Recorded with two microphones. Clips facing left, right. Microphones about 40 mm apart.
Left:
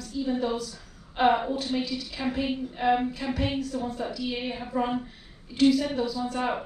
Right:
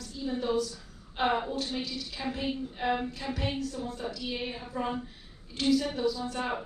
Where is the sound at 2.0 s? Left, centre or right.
Left.